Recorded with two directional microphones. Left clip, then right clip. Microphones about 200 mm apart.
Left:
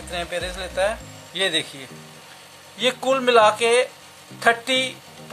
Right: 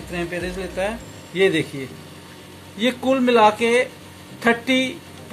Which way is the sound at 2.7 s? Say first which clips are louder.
Even; 30° left (ahead or behind).